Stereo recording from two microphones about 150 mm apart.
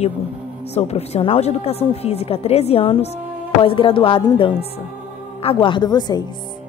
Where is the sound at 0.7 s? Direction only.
45° left (ahead or behind); by 6.2 s 25° left (ahead or behind).